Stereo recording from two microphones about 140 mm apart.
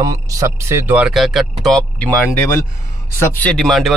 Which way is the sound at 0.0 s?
20° right (ahead or behind).